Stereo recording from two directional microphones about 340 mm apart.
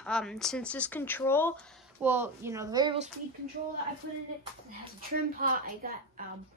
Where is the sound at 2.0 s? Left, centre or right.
Centre.